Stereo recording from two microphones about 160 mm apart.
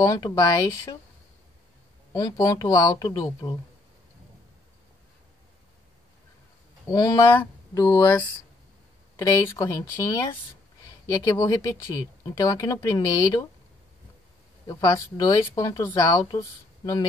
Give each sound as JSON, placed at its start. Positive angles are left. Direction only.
{"t": 0.0, "sound": "speech", "side_deg": 20}
{"t": 2.1, "sound": "speech", "side_deg": 25}
{"t": 6.9, "sound": "speech", "side_deg": 20}
{"t": 7.3, "sound": "a sound", "side_deg": 20}
{"t": 9.2, "sound": "speech", "side_deg": 15}
{"t": 14.7, "sound": "speech", "side_deg": 20}